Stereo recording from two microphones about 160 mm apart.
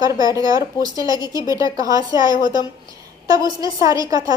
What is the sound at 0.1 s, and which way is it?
Speech, 20° right (ahead or behind).